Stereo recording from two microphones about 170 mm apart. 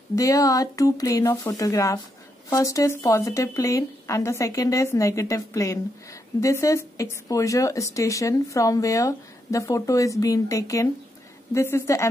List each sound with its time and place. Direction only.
0.1 s a woman's voice: 20° left (ahead or behind)